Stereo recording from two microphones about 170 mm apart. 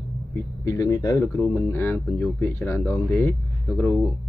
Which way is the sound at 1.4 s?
10° left (ahead or behind).